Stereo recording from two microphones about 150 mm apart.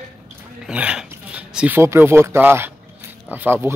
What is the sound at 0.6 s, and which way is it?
Speech, 5° right (ahead or behind).